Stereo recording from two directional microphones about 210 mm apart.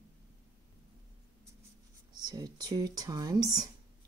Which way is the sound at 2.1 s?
20° right (ahead or behind).